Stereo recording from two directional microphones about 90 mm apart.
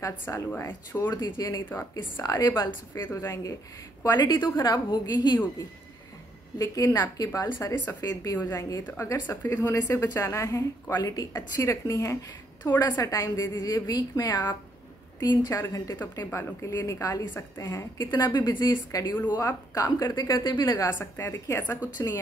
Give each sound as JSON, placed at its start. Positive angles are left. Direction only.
{"t": 0.0, "sound": "a woman's voice", "side_deg": 30}
{"t": 1.1, "sound": "a woman's voice", "side_deg": 50}
{"t": 1.7, "sound": "a woman's voice", "side_deg": 20}
{"t": 2.2, "sound": "a woman's voice", "side_deg": 45}
{"t": 2.9, "sound": "a woman's voice", "side_deg": 25}
{"t": 4.2, "sound": "a woman's voice", "side_deg": 50}
{"t": 6.6, "sound": "a woman's voice", "side_deg": 40}
{"t": 8.8, "sound": "a woman's voice", "side_deg": 25}
{"t": 9.8, "sound": "a woman's voice", "side_deg": 35}
{"t": 16.0, "sound": "a woman's voice", "side_deg": 25}
{"t": 16.6, "sound": "a woman's voice", "side_deg": 35}
{"t": 21.0, "sound": "a woman's voice", "side_deg": 30}